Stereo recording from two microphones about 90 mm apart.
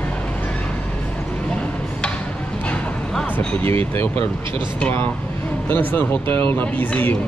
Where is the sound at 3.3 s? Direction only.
20° left (ahead or behind).